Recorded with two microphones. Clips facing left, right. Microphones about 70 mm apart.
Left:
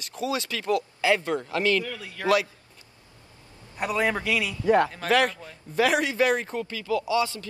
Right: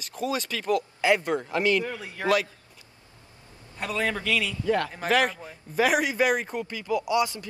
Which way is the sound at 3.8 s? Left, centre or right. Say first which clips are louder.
Left 3 dB; centre.